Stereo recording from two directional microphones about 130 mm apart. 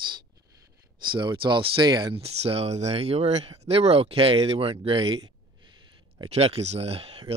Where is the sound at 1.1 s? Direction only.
40° right (ahead or behind).